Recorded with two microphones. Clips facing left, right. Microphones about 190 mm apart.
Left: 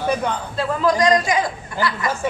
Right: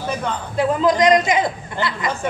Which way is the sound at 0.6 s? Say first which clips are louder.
Right 3 dB; 20° right (ahead or behind).